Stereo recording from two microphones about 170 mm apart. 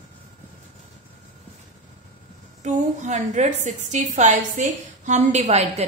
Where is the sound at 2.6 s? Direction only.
45° right (ahead or behind).